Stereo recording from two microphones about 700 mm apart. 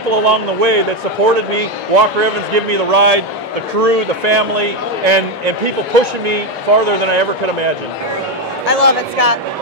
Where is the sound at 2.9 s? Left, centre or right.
Right.